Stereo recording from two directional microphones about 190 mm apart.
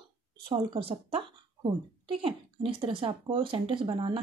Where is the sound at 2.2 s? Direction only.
30° right (ahead or behind).